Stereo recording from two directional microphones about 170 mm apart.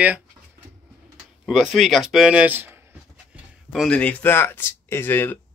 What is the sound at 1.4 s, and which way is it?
Speech, centre (ahead or behind).